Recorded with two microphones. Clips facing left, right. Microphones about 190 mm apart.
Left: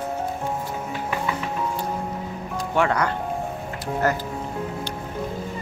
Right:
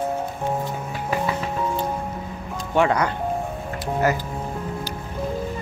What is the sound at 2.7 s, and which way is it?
Speech, 20° right (ahead or behind).